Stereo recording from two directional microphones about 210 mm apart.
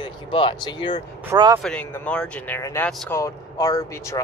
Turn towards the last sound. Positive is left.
turn(degrees=15)  # may be behind; listen again after turning